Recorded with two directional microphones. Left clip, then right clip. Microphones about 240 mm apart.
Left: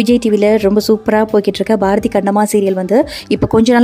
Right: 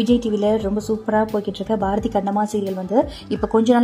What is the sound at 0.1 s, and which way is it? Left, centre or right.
Speech, left.